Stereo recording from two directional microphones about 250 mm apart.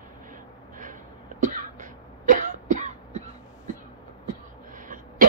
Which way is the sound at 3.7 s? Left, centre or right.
Right.